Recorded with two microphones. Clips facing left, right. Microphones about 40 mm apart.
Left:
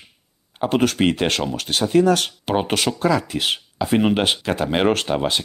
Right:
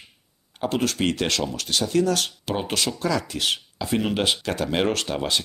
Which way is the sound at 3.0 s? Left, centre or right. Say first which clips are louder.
Left 5 dB; left.